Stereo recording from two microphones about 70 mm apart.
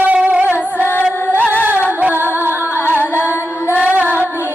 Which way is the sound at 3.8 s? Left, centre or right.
Right.